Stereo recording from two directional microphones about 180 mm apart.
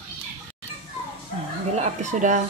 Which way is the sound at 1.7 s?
40° right (ahead or behind).